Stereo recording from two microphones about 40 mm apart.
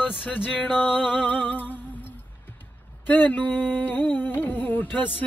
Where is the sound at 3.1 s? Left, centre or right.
Left.